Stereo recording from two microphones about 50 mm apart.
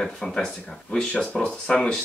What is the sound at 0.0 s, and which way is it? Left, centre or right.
Speech, centre.